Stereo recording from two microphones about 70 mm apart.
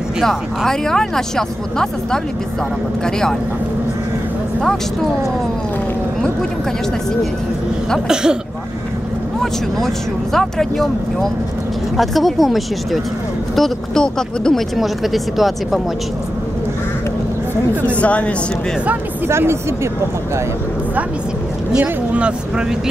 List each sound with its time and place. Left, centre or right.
0.7 s speech: centre
8.1 s speech: centre
10.3 s speech: centre
14.8 s speech: centre
17.8 s a woman's voice: centre
19.2 s speech: right
21.7 s speech: centre